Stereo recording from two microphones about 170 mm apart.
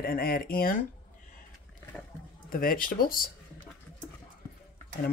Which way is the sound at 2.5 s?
55° left (ahead or behind).